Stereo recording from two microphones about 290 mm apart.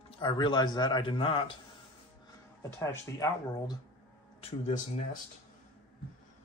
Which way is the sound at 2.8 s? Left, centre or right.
Centre.